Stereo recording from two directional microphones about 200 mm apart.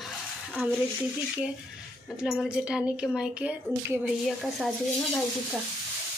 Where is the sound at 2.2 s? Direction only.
5° right (ahead or behind).